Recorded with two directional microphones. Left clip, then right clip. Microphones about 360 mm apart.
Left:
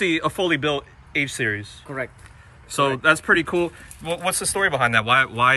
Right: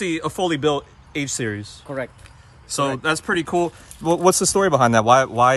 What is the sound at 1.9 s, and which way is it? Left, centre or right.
Speech, right.